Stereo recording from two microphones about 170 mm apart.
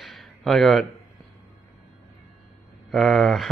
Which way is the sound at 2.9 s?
Centre (ahead or behind).